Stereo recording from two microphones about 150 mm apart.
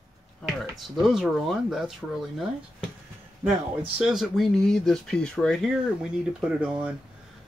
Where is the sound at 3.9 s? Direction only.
5° right (ahead or behind).